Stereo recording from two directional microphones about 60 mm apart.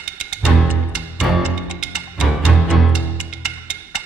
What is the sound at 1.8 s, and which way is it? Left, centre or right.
Music, centre.